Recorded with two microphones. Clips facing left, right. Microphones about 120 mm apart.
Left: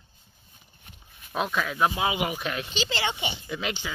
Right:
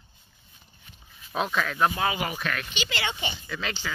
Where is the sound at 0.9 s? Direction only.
60° left (ahead or behind).